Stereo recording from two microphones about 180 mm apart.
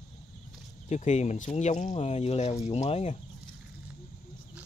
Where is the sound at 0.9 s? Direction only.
40° left (ahead or behind).